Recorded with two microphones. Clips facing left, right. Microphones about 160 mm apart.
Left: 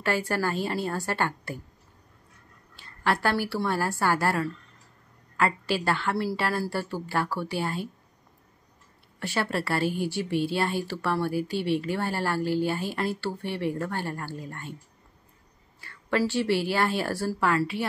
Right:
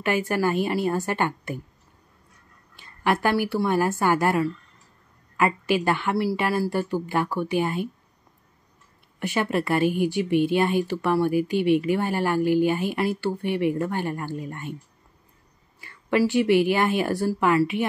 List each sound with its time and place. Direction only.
0.0 s speech: 15° right (ahead or behind)
2.7 s a woman's voice: 15° right (ahead or behind)
9.2 s speech: 15° right (ahead or behind)
15.8 s speech: 15° right (ahead or behind)